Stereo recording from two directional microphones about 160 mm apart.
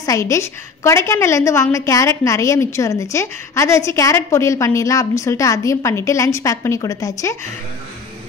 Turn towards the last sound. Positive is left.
turn(degrees=15)  # may be behind; listen again after turning